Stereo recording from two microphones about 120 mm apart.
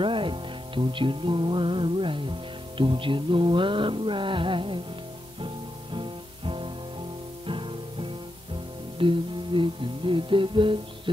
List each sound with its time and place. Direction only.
0.0 s music: 45° right (ahead or behind)
5.9 s music: 45° right (ahead or behind)